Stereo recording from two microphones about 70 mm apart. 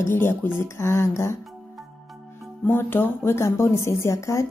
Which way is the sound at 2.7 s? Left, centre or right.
Left.